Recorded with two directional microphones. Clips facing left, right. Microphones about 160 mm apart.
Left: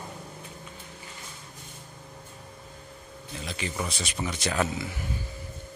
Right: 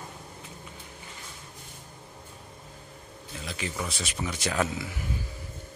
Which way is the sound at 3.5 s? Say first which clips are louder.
Left 1 dB; centre (ahead or behind).